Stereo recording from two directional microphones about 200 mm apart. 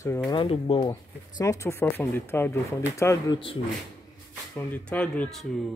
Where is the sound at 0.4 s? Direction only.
25° left (ahead or behind).